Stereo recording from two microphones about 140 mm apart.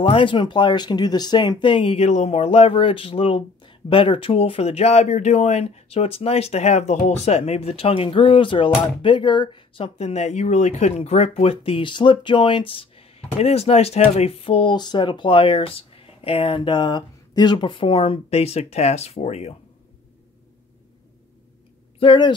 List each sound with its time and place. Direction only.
0.0 s speech: 40° left (ahead or behind)
9.9 s speech: 50° left (ahead or behind)
22.0 s speech: 35° left (ahead or behind)